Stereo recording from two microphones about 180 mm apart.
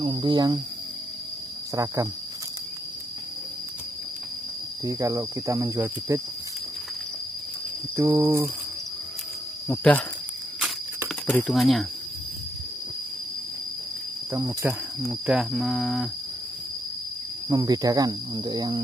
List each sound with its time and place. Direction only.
0.0 s speech: 30° right (ahead or behind)
4.8 s speech: 15° right (ahead or behind)
7.9 s speech: 15° right (ahead or behind)
11.1 s speech: 10° left (ahead or behind)
14.3 s speech: 10° right (ahead or behind)
15.0 s speech: centre (ahead or behind)
17.5 s speech: 20° right (ahead or behind)